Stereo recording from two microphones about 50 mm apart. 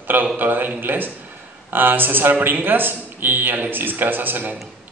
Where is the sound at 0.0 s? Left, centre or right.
Right.